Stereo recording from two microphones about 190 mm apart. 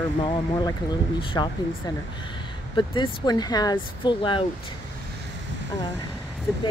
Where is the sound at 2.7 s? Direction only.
25° left (ahead or behind).